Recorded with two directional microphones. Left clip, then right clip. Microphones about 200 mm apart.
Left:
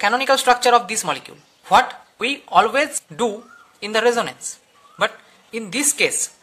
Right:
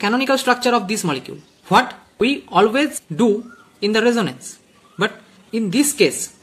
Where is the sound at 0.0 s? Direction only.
30° left (ahead or behind).